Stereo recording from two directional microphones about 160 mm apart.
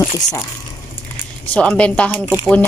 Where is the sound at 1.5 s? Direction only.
10° left (ahead or behind).